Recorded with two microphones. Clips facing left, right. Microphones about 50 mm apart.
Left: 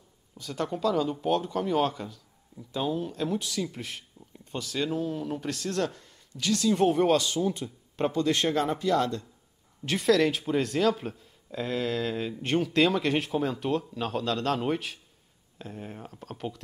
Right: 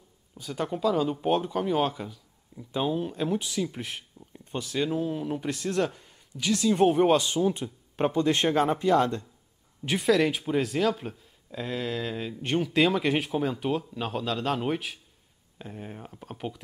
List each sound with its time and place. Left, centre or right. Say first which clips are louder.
0.4 s speech: right 1 dB; centre
2.7 s speech: right 2 dB; right
9.8 s speech: even; centre